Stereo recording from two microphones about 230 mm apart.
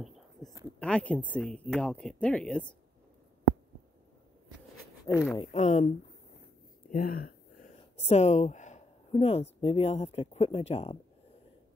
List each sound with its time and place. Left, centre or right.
0.7 s speech: centre
5.1 s speech: centre
5.4 s a woman's voice: left
6.9 s speech: left